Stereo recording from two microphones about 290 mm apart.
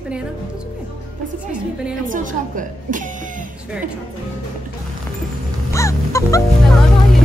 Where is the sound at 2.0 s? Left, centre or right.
Right.